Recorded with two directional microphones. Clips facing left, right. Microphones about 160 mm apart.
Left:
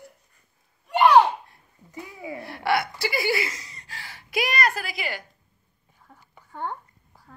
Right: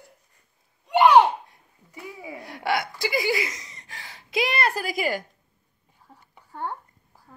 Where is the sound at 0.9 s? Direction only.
15° right (ahead or behind).